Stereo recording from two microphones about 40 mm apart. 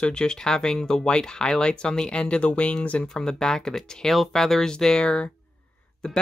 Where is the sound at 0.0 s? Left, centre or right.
Left.